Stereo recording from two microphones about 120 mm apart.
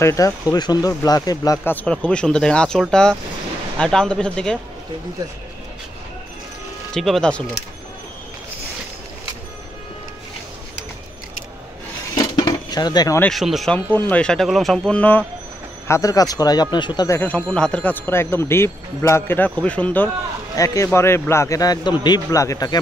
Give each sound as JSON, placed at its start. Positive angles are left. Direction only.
{"t": 0.0, "sound": "speech", "side_deg": 25}
{"t": 1.6, "sound": "speech", "side_deg": 15}
{"t": 6.9, "sound": "speech", "side_deg": 5}
{"t": 12.4, "sound": "cutlery", "side_deg": 35}
{"t": 13.3, "sound": "speech", "side_deg": 0}
{"t": 13.9, "sound": "speech", "side_deg": 15}
{"t": 14.2, "sound": "speech", "side_deg": 5}
{"t": 15.9, "sound": "speech", "side_deg": 30}
{"t": 17.1, "sound": "speech", "side_deg": 15}
{"t": 20.5, "sound": "speech", "side_deg": 25}